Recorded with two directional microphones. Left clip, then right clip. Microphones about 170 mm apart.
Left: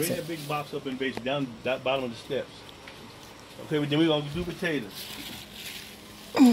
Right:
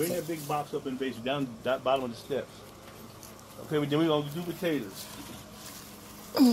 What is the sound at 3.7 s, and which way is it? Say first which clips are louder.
Speech: left 2 dB; 55° left (ahead or behind).